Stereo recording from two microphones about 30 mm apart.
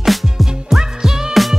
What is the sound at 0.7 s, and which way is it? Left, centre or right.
Music, centre.